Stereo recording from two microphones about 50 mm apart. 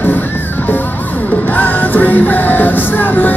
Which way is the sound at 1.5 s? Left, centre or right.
Left.